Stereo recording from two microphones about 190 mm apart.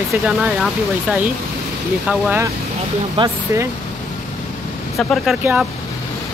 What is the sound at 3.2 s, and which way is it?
Speech, 30° right (ahead or behind).